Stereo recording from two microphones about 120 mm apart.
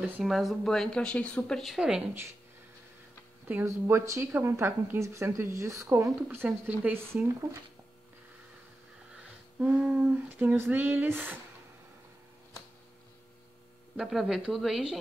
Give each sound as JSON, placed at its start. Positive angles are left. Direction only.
{"t": 0.0, "sound": "speech", "side_deg": 0}
{"t": 1.6, "sound": "speech", "side_deg": -5}
{"t": 3.6, "sound": "speech", "side_deg": -25}
{"t": 9.1, "sound": "a sound", "side_deg": -10}
{"t": 13.9, "sound": "speech", "side_deg": 0}